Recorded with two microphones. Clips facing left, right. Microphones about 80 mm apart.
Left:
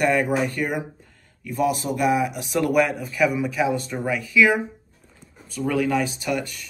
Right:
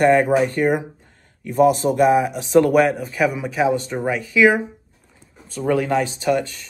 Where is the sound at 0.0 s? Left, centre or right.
Right.